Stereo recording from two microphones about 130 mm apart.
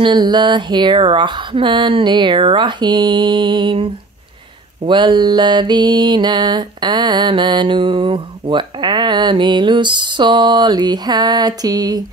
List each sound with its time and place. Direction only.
0.0 s mantra: 35° right (ahead or behind)